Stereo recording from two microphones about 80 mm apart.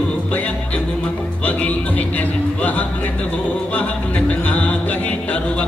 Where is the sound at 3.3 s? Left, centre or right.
Centre.